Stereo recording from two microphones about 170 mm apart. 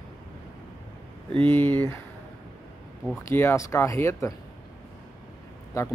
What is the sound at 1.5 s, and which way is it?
Speech, 10° left (ahead or behind).